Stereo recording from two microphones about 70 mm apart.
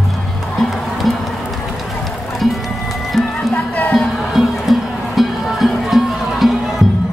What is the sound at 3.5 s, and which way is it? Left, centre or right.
Music, left.